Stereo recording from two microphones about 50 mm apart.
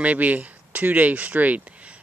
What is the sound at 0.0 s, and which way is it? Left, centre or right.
Speech, right.